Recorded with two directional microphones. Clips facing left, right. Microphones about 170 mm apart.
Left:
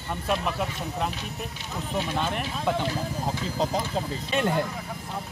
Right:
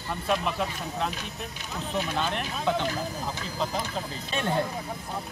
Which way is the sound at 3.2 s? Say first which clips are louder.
Left 4 dB; 30° left (ahead or behind).